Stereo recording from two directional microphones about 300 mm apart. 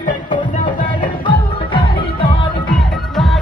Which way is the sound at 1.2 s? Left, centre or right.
Centre.